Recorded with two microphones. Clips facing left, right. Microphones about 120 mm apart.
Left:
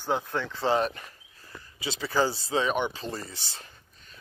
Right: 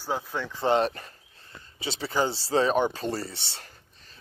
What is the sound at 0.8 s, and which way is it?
Speech, 35° right (ahead or behind).